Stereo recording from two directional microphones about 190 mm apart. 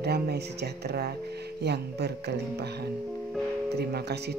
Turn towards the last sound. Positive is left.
turn(degrees=-60)  # may be behind; listen again after turning